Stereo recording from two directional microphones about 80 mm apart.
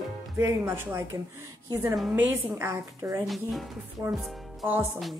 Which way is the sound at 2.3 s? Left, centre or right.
Right.